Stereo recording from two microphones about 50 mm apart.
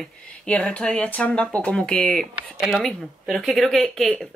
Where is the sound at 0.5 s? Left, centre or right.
Left.